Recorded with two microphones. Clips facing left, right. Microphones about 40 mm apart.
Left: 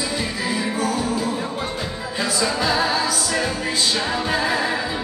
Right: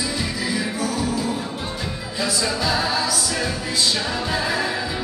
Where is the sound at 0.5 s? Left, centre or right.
Left.